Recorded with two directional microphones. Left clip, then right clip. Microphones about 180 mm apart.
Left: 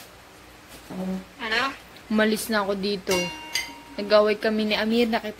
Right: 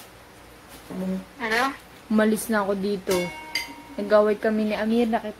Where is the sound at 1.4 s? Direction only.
35° right (ahead or behind).